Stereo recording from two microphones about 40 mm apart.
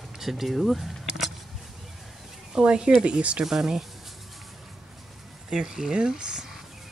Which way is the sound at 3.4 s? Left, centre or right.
Centre.